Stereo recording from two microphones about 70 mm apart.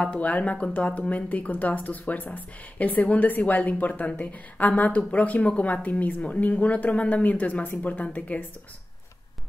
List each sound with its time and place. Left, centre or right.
0.0 s a woman's voice: centre